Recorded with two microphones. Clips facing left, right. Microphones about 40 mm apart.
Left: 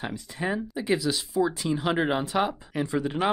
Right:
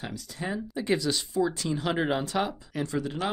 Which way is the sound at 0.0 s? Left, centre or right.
Left.